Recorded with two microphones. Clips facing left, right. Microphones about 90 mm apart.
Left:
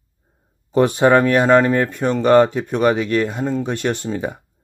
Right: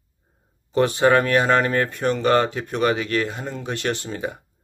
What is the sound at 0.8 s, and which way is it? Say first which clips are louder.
Speech: left 4 dB; 20° left (ahead or behind).